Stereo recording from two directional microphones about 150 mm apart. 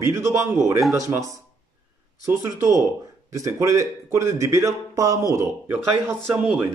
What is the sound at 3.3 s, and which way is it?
Speech, 20° right (ahead or behind).